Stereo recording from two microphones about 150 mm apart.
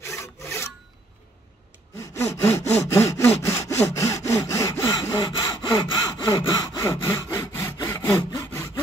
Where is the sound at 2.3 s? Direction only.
45° left (ahead or behind).